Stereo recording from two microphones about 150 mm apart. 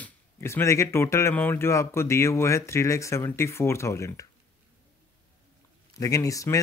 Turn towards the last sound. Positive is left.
turn(degrees=20)  # may be behind; listen again after turning